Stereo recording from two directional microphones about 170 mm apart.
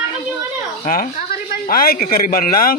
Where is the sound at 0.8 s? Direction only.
55° left (ahead or behind).